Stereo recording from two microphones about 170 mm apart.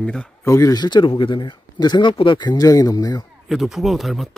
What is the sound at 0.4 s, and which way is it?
Speech, 20° left (ahead or behind).